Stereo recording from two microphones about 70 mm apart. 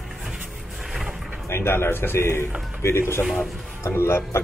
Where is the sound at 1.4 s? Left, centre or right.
Left.